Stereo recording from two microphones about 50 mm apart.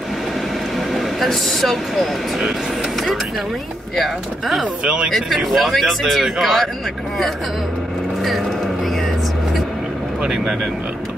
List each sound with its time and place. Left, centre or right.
0.7 s speech: centre
3.9 s speech: centre
4.8 s speech: centre
5.1 s speech: centre
10.2 s speech: centre